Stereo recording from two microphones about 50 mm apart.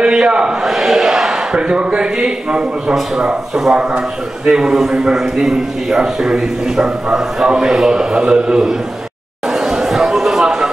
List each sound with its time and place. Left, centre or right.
0.0 s a man's voice: centre
9.5 s chatter: centre